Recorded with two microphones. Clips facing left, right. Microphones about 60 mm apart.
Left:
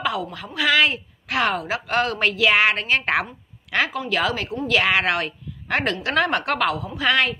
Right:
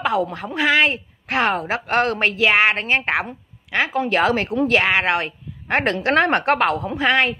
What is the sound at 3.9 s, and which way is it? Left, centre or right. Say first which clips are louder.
Speech: right 5 dB; right.